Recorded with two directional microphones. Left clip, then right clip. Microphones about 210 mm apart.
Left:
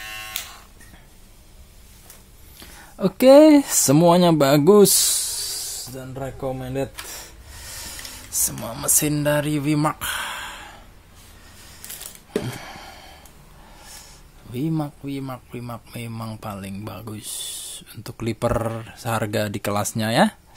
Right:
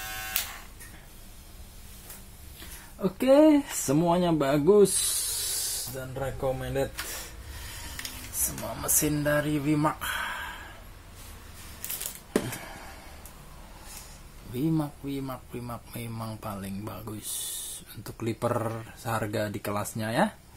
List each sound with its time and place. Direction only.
3.0 s speech: 55° left (ahead or behind)
5.3 s a sound: 45° left (ahead or behind)
8.5 s speech: 50° left (ahead or behind)
14.5 s speech: 35° left (ahead or behind)